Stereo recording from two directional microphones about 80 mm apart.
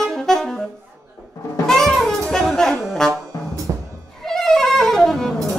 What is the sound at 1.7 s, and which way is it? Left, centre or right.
Music, centre.